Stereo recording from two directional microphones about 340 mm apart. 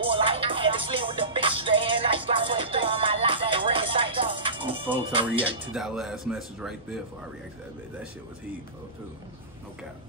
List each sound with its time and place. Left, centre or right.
0.0 s music: centre
4.9 s speech: centre
5.7 s speech: centre